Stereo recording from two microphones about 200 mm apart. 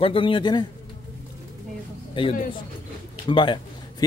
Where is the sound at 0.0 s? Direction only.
25° left (ahead or behind).